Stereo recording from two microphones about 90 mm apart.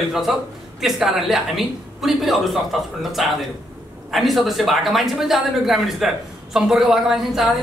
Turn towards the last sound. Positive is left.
turn(degrees=-5)  # may be behind; listen again after turning